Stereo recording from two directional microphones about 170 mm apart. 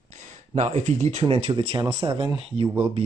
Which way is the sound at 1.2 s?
30° right (ahead or behind).